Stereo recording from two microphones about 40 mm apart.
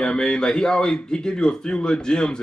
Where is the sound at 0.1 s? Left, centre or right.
Centre.